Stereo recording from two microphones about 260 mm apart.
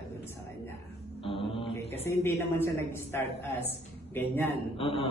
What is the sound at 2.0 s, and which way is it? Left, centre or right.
A man's voice, centre.